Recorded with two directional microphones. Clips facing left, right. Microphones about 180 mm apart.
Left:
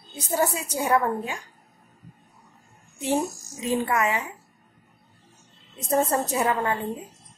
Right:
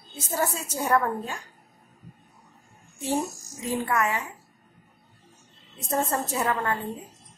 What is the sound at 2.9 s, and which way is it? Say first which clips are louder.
Speech: left 3 dB; 20° left (ahead or behind).